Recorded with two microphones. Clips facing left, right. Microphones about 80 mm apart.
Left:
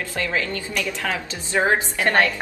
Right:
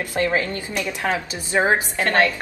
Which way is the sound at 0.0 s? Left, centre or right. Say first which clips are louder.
Right 4 dB; right.